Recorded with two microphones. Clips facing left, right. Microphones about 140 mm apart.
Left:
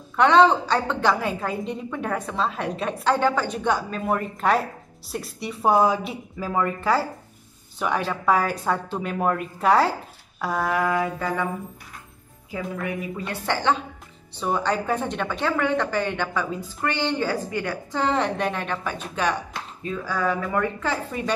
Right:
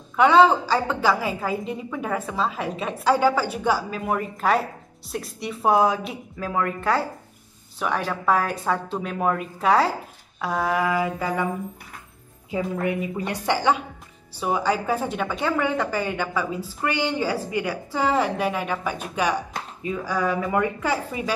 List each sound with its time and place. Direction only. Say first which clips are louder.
0.1 s a woman's voice: right 1 dB; 5° right (ahead or behind)
12.4 s a woman's voice: right 4 dB; 25° right (ahead or behind)